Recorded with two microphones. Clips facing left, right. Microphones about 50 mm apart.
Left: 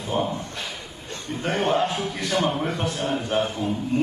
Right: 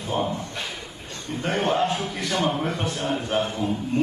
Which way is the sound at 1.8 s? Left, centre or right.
Centre.